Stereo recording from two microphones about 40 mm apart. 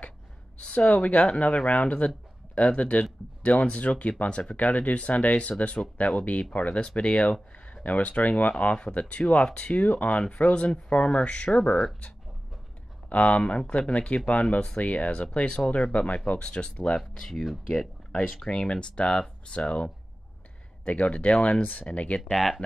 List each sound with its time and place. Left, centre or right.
0.6 s speech: left
13.1 s speech: left
17.5 s speech: centre
18.1 s speech: centre; by 22.2 s left
22.3 s speech: centre